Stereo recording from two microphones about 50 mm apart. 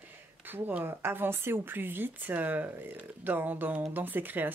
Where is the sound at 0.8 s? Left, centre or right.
Right.